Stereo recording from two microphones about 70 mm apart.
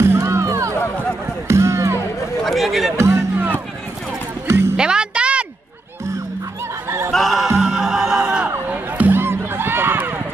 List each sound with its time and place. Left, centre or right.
0.2 s music: right
2.4 s chatter: centre
3.0 s music: right
4.5 s music: right
4.7 s music: centre
7.1 s music: centre
8.5 s run: right